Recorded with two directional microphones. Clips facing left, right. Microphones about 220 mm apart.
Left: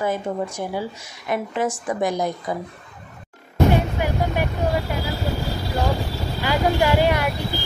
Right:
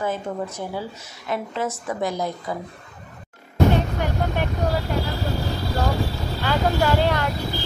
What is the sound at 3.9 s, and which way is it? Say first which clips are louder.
Vehicle: left 2 dB; 10° left (ahead or behind).